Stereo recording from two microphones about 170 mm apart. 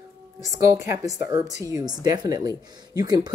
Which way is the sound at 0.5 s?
15° right (ahead or behind).